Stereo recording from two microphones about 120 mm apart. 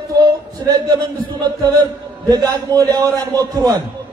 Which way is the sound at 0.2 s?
35° right (ahead or behind).